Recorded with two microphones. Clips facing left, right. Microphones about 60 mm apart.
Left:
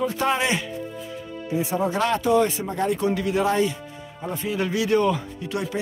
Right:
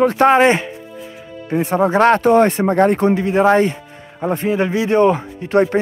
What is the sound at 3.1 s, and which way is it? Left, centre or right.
Speech, right.